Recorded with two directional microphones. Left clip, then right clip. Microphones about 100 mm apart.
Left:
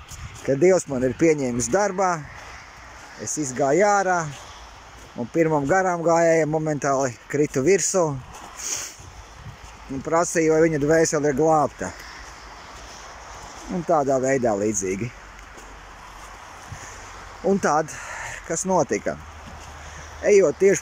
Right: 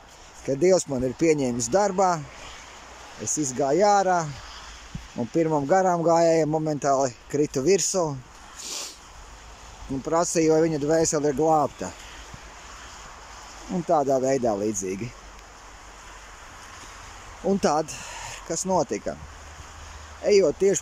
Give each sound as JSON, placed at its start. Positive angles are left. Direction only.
{"t": 0.5, "sound": "speech", "side_deg": -15}
{"t": 3.3, "sound": "speech", "side_deg": -20}
{"t": 10.0, "sound": "speech", "side_deg": -15}
{"t": 13.8, "sound": "speech", "side_deg": -15}
{"t": 17.5, "sound": "speech", "side_deg": -15}
{"t": 20.2, "sound": "speech", "side_deg": -15}